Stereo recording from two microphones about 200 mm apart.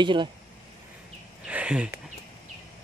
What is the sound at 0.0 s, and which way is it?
Speech, 25° right (ahead or behind).